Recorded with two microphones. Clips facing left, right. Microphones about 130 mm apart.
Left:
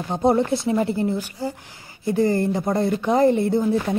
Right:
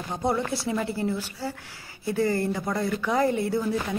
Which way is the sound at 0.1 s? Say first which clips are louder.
Left 8 dB; 25° left (ahead or behind).